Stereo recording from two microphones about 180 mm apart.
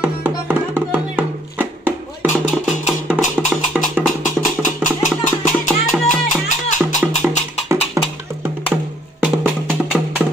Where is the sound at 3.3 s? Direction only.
5° right (ahead or behind).